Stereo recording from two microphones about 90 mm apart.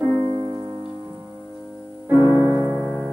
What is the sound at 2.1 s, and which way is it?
Music, 35° left (ahead or behind).